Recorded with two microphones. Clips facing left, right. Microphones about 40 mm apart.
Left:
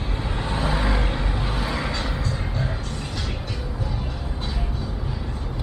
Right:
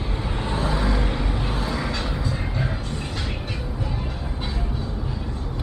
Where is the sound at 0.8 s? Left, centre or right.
Centre.